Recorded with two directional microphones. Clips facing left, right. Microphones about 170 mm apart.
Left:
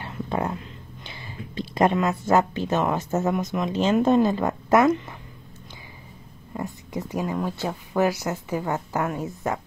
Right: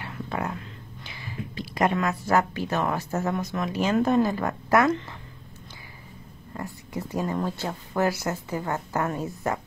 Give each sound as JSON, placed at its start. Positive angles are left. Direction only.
{"t": 0.0, "sound": "a sound", "side_deg": 25}
{"t": 3.5, "sound": "speech", "side_deg": 20}
{"t": 6.5, "sound": "speech", "side_deg": 20}